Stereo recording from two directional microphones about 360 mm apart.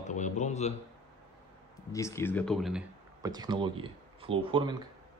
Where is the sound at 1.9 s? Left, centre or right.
Centre.